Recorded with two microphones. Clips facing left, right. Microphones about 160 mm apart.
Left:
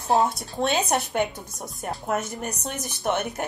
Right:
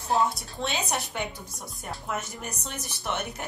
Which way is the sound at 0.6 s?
45° left (ahead or behind).